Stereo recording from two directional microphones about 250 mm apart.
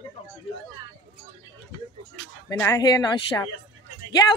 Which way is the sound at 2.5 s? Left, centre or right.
Centre.